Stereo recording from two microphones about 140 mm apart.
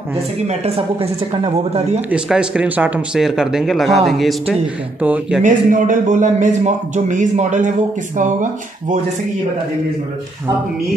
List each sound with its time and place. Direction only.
0.5 s speech: 45° right (ahead or behind)
2.0 s speech: 5° right (ahead or behind)
5.0 s speech: 10° right (ahead or behind)
5.4 s a man's voice: 65° right (ahead or behind)